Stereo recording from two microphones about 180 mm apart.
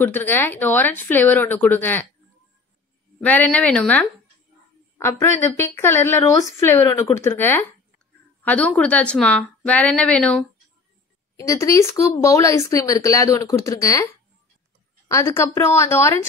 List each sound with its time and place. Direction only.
0.0 s speech: 10° left (ahead or behind)
3.3 s speech: 10° left (ahead or behind)
5.4 s speech: 15° left (ahead or behind)
11.3 s speech: 15° left (ahead or behind)
15.0 s speech: 15° left (ahead or behind)